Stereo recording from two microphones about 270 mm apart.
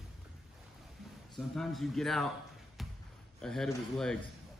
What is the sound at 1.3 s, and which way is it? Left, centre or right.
Speech, centre.